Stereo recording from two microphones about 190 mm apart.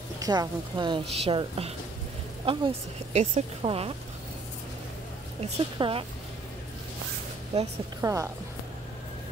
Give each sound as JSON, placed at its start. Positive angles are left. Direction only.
{"t": 0.2, "sound": "a woman's voice", "side_deg": -20}
{"t": 5.4, "sound": "a woman's voice", "side_deg": -30}
{"t": 7.5, "sound": "speech", "side_deg": -35}
{"t": 8.0, "sound": "speech", "side_deg": -15}